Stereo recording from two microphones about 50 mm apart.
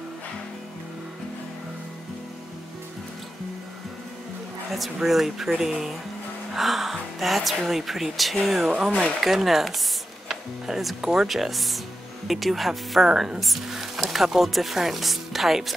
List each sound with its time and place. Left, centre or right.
4.6 s speech: centre
13.1 s speech: centre